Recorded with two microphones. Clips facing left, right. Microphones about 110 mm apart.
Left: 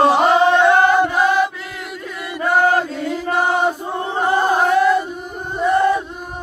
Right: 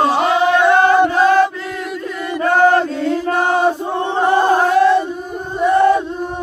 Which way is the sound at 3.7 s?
20° right (ahead or behind).